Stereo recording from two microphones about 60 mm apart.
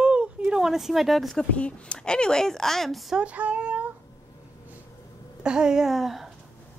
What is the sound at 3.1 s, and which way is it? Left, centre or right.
Speech, right.